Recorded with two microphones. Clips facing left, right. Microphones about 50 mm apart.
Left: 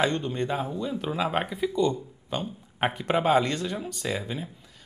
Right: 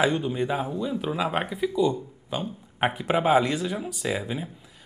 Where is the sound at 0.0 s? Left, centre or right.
Centre.